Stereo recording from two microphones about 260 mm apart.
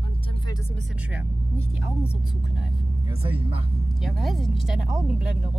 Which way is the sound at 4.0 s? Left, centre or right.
Centre.